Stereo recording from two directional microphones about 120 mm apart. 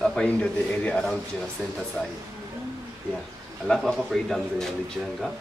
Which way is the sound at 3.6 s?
5° left (ahead or behind).